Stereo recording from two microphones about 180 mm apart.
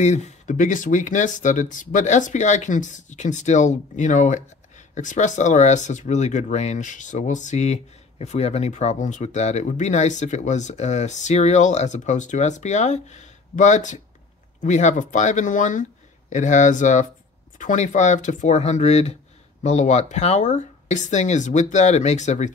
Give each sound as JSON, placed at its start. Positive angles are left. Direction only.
{"t": 0.0, "sound": "speech", "side_deg": 40}